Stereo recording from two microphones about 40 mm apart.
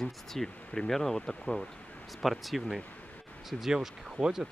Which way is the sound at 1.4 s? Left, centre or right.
Left.